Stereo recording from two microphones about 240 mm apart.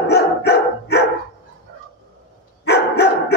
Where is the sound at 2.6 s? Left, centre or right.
Left.